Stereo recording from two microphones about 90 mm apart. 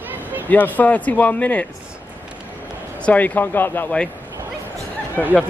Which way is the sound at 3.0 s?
15° left (ahead or behind).